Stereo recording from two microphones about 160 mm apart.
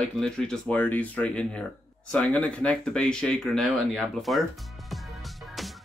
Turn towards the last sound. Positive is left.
turn(degrees=0)  # may be behind; listen again after turning